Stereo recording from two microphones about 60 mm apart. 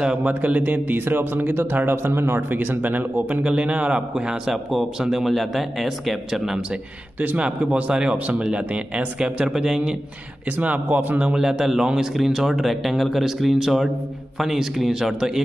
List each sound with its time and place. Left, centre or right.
0.0 s speech: centre
4.5 s speech: centre
7.2 s a man's voice: right
9.5 s a man's voice: centre
10.6 s speech: right
11.1 s a man's voice: centre